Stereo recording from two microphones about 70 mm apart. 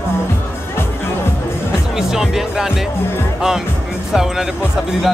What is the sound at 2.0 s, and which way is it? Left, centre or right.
Speech, centre.